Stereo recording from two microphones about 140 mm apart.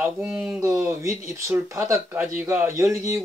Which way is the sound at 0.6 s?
20° right (ahead or behind).